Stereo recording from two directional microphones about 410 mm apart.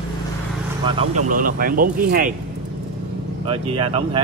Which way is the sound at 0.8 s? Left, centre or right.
Centre.